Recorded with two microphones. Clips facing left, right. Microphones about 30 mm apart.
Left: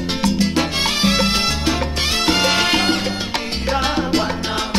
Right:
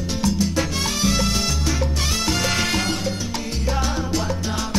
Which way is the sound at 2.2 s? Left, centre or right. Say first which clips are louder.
Left 6 dB; left.